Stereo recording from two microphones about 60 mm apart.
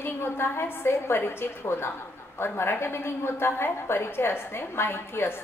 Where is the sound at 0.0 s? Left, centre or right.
Left.